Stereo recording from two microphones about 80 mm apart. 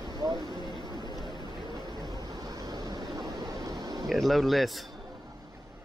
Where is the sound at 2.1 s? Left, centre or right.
Right.